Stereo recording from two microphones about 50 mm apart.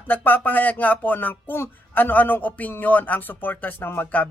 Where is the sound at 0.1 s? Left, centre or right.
Left.